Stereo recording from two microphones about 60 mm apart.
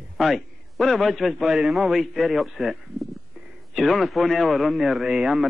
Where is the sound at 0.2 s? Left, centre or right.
Centre.